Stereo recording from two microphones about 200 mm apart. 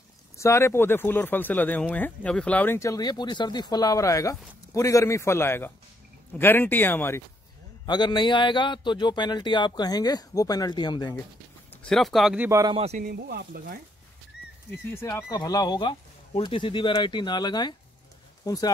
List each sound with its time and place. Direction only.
0.4 s a man's voice: 15° left (ahead or behind)
11.7 s speech: 5° left (ahead or behind)
12.4 s a man's voice: 15° right (ahead or behind)
12.7 s speech: 30° right (ahead or behind)
13.0 s speech: 50° right (ahead or behind)
15.0 s a man's voice: 15° left (ahead or behind)